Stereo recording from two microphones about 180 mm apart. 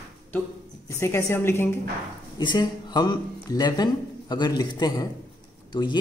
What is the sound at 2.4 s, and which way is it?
Speech, 25° left (ahead or behind).